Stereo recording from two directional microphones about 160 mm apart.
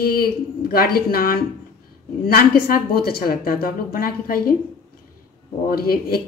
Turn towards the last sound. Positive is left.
turn(degrees=70)  # may be behind; listen again after turning